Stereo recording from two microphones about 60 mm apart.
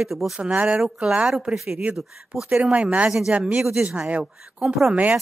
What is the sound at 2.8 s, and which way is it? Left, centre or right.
Speech, right.